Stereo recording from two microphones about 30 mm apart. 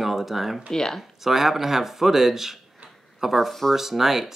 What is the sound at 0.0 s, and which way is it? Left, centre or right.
Speech, centre.